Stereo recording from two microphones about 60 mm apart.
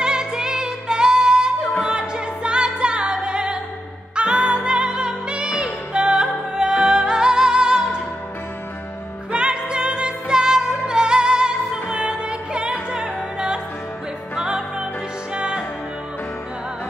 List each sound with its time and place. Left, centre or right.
0.0 s music: centre
9.3 s music: centre